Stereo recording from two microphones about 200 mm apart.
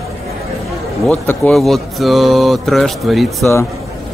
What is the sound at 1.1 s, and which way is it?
Speech, 5° left (ahead or behind).